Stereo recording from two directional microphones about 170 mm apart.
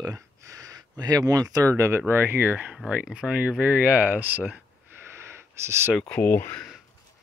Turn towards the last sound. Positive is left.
turn(degrees=10)  # may be behind; listen again after turning